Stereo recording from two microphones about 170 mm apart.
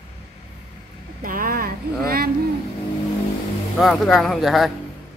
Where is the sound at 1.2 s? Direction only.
55° right (ahead or behind).